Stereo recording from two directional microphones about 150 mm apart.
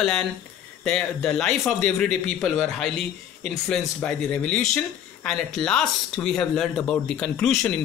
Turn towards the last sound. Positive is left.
turn(degrees=5)  # may be behind; listen again after turning